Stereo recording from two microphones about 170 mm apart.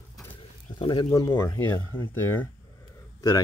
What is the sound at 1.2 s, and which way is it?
Speech, 15° left (ahead or behind).